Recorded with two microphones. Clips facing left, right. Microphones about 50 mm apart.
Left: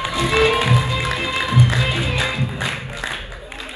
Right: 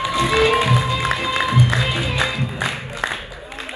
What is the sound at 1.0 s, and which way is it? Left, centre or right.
Music, right.